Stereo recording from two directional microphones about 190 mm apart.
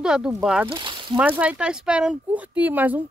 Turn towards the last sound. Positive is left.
turn(degrees=-10)  # may be behind; listen again after turning